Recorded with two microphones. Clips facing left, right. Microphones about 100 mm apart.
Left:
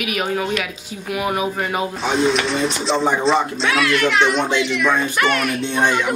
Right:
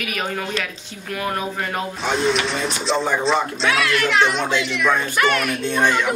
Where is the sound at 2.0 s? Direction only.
Centre (ahead or behind).